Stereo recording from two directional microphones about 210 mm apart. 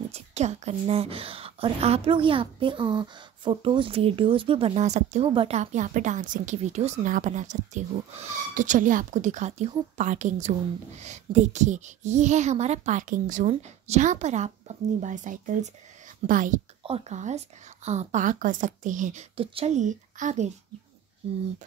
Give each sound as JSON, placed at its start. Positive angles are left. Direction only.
{"t": 0.1, "sound": "a woman's voice", "side_deg": -30}